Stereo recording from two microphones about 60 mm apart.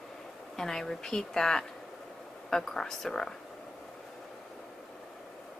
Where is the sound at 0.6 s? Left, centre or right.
Centre.